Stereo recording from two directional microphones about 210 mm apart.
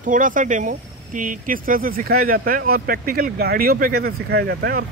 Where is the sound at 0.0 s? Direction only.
40° right (ahead or behind).